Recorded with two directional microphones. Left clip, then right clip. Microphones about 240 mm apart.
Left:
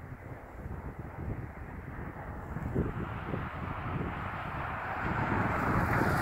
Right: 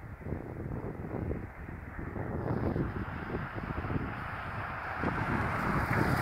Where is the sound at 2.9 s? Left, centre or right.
Right.